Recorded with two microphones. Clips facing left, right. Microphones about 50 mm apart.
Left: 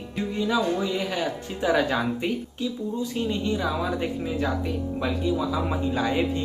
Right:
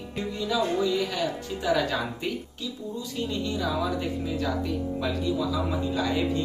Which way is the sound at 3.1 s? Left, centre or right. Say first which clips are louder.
Left 1 dB; left.